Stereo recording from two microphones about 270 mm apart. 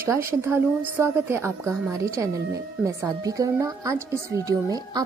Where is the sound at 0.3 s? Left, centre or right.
Centre.